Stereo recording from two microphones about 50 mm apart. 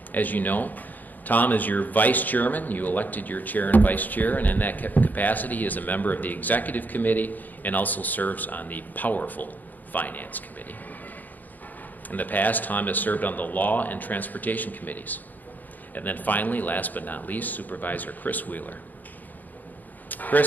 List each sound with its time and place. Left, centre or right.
0.1 s a man's voice: left
12.1 s a man's voice: left
20.1 s a sound: left